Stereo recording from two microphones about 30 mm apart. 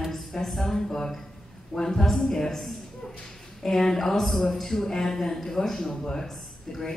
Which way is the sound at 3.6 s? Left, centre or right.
Centre.